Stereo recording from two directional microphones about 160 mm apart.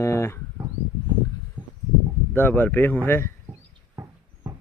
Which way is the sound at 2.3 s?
10° left (ahead or behind).